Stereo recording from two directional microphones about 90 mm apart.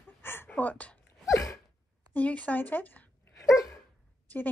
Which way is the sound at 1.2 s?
35° left (ahead or behind).